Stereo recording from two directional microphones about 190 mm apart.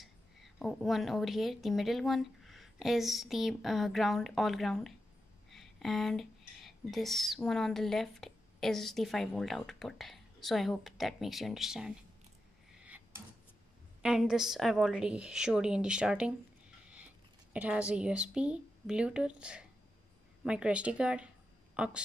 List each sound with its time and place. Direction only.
0.0 s a woman's voice: centre (ahead or behind)
12.7 s a sound: 10° right (ahead or behind)
14.0 s a woman's voice: 5° right (ahead or behind)